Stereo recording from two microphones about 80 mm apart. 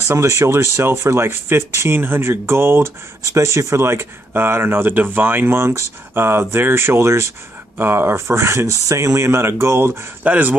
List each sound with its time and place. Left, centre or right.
0.1 s speech: right
10.2 s speech: centre